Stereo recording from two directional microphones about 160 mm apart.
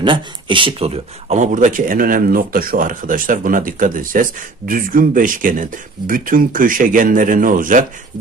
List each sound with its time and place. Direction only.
0.0 s speech: 30° right (ahead or behind); by 7.8 s 55° right (ahead or behind)